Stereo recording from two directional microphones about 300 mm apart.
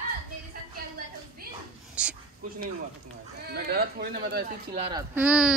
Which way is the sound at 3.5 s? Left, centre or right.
Right.